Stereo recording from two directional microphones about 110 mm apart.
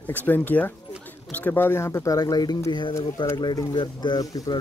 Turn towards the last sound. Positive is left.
turn(degrees=35)  # may be behind; listen again after turning